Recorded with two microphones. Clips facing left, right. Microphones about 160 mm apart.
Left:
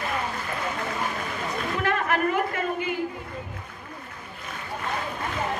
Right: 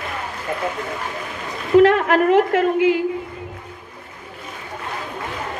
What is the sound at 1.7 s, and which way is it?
A woman's voice, 90° right.